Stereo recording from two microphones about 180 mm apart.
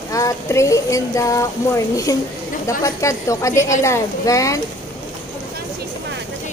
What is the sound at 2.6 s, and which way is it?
A woman's voice, 15° left (ahead or behind).